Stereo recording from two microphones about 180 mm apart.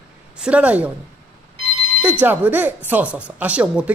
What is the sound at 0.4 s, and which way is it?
Speech, 5° right (ahead or behind).